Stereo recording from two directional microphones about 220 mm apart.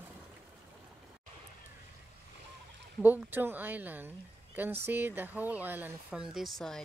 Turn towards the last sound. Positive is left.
turn(degrees=0)  # may be behind; listen again after turning